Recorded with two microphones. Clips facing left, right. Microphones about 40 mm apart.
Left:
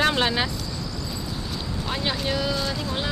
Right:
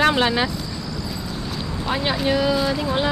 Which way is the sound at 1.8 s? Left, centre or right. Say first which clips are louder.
Right 6 dB; centre.